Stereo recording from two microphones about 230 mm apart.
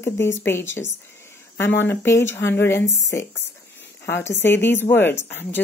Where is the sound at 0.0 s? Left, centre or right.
Centre.